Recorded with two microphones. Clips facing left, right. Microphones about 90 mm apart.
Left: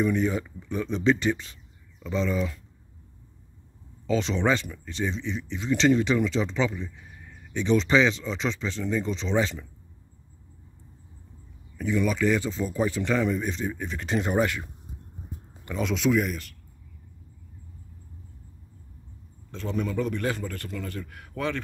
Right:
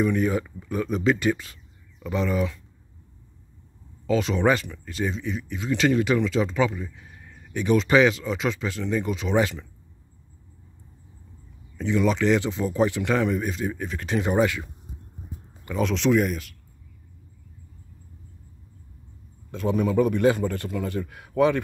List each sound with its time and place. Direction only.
0.0 s speech: 5° right (ahead or behind)
4.2 s speech: 10° right (ahead or behind)
11.8 s a man's voice: 20° right (ahead or behind)
13.2 s speech: 5° right (ahead or behind)
19.5 s a man's voice: 15° right (ahead or behind)